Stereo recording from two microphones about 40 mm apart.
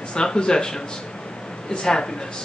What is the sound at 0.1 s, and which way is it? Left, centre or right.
A man's voice, left.